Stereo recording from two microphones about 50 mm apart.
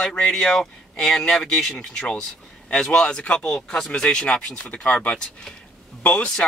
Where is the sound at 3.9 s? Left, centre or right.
Centre.